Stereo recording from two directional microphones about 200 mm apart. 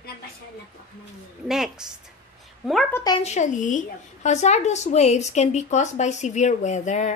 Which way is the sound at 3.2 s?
35° left (ahead or behind).